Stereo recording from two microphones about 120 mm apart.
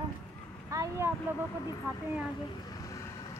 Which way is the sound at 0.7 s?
25° right (ahead or behind).